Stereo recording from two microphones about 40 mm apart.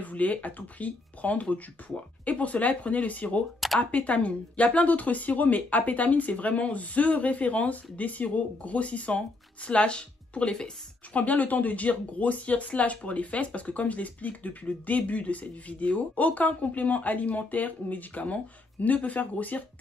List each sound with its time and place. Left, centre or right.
0.0 s speech: left
11.1 s speech: left